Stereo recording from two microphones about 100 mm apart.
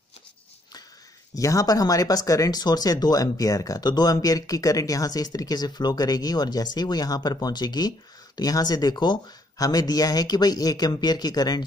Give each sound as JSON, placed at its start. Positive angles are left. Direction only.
{"t": 1.3, "sound": "speech", "side_deg": 30}